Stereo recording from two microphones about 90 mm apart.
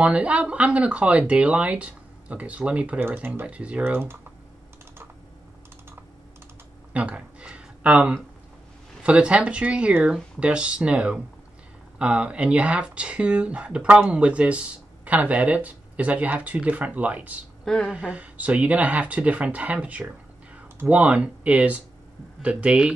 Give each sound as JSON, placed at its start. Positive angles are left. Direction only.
{"t": 0.0, "sound": "speech", "side_deg": -15}
{"t": 3.8, "sound": "speech", "side_deg": -25}
{"t": 6.9, "sound": "a sound", "side_deg": -15}
{"t": 9.0, "sound": "speech", "side_deg": -10}